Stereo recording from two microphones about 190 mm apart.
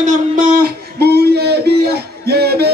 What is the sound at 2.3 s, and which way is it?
Music, 55° right (ahead or behind).